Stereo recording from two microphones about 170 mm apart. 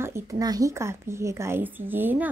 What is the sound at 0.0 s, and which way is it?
A woman's voice, 15° right (ahead or behind).